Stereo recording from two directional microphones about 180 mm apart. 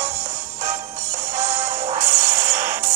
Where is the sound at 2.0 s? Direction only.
15° right (ahead or behind).